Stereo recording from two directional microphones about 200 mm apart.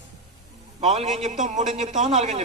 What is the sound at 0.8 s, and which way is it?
A woman's voice, 35° right (ahead or behind).